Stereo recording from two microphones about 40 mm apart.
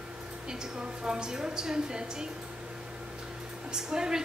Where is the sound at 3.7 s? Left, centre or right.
Centre.